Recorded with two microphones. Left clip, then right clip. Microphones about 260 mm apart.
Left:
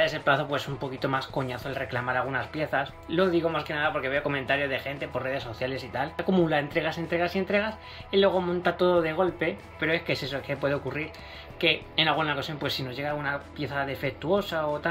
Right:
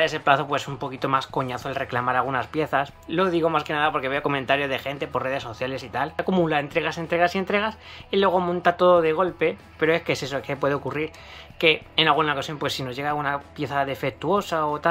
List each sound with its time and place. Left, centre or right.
0.0 s speech: centre